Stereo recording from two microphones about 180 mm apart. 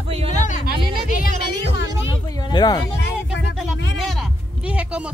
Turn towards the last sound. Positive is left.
turn(degrees=-5)  # may be behind; listen again after turning